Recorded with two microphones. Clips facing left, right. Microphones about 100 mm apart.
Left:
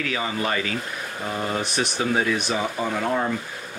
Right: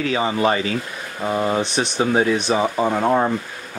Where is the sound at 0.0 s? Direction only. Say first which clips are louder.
Right 7 dB; 30° right (ahead or behind).